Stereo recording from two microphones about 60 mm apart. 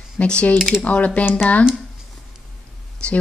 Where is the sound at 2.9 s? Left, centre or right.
Centre.